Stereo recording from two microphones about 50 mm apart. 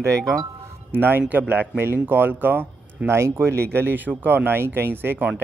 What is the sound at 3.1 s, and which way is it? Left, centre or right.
Speech, right.